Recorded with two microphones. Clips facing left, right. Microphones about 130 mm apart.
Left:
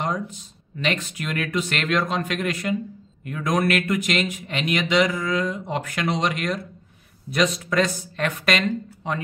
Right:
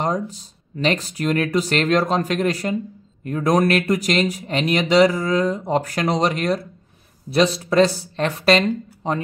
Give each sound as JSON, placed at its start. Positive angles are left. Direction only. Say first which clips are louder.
{"t": 0.0, "sound": "speech", "louder": "right 4 dB", "side_deg": -35}